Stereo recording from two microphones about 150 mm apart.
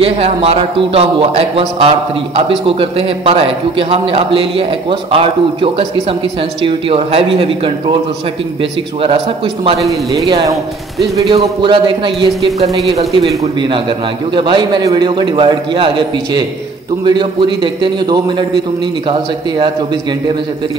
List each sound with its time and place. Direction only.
0.0 s a man's voice: 40° right (ahead or behind)
9.0 s a man's voice: 40° right (ahead or behind)
11.2 s a man's voice: 35° right (ahead or behind)
17.0 s a man's voice: 30° right (ahead or behind)